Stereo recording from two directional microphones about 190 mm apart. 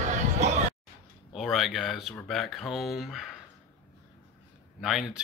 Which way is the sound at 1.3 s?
Centre (ahead or behind).